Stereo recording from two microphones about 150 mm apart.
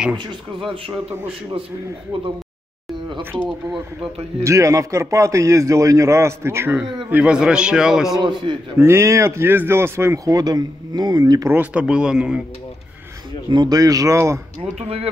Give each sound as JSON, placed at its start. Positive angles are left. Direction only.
{"t": 0.1, "sound": "speech", "side_deg": -30}
{"t": 2.1, "sound": "speech", "side_deg": -35}
{"t": 4.4, "sound": "a man's voice", "side_deg": -20}
{"t": 8.2, "sound": "speech", "side_deg": -30}
{"t": 8.7, "sound": "speech", "side_deg": -15}
{"t": 11.5, "sound": "a man's voice", "side_deg": -10}
{"t": 13.5, "sound": "speech", "side_deg": -25}
{"t": 14.6, "sound": "speech", "side_deg": -40}